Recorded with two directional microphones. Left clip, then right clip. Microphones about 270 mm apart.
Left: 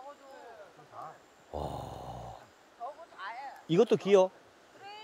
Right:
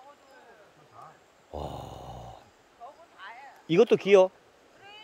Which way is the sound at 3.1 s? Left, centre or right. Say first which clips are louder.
Left 2 dB; left.